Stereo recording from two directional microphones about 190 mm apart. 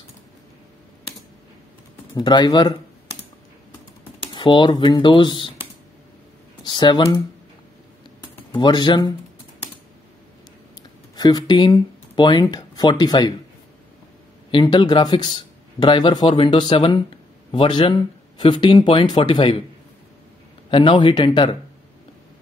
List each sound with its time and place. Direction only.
2.1 s speech: 20° left (ahead or behind)
4.3 s speech: 25° left (ahead or behind)
6.6 s speech: 25° left (ahead or behind)
8.5 s speech: 25° left (ahead or behind)
11.1 s speech: 20° left (ahead or behind)
14.5 s speech: 25° left (ahead or behind)
20.7 s speech: 25° left (ahead or behind)